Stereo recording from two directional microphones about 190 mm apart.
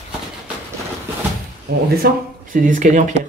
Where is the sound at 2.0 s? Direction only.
45° right (ahead or behind).